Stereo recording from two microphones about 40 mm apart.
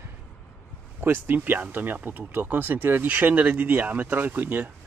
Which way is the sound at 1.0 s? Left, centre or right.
Right.